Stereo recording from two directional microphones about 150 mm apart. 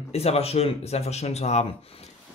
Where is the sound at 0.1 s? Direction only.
45° left (ahead or behind).